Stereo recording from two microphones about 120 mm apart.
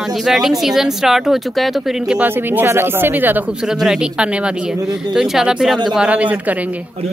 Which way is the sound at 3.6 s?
5° right (ahead or behind).